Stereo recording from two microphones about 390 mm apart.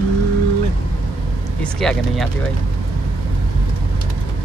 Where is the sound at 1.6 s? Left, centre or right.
Centre.